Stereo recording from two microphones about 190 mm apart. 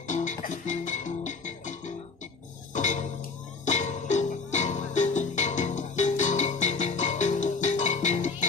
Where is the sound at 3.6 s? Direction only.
40° left (ahead or behind).